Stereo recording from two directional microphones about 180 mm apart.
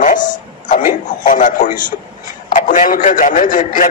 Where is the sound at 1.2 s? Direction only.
45° left (ahead or behind).